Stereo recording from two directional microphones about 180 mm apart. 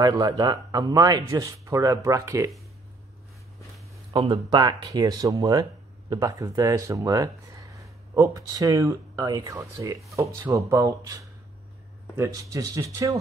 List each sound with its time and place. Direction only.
0.0 s speech: 20° right (ahead or behind)
4.1 s speech: 25° right (ahead or behind)